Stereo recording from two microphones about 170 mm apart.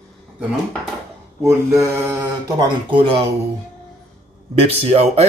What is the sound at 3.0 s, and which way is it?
Speech, 30° right (ahead or behind).